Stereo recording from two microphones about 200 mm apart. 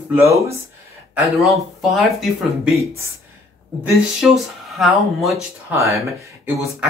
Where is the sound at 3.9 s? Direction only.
Centre (ahead or behind).